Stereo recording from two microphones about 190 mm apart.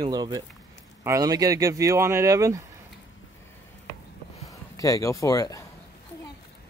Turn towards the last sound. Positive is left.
turn(degrees=20)  # may be behind; listen again after turning